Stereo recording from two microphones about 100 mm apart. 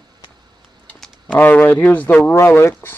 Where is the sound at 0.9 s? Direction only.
5° left (ahead or behind).